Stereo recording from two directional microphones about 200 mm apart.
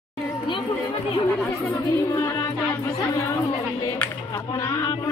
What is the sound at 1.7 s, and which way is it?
Speech, 15° left (ahead or behind).